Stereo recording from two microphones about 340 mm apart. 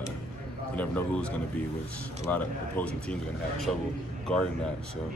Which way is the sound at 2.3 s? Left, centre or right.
Centre.